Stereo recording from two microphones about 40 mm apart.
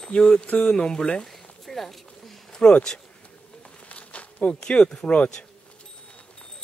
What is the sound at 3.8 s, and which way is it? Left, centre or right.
Insect, left.